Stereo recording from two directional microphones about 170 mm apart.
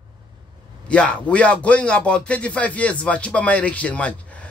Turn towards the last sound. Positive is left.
turn(degrees=5)  # may be behind; listen again after turning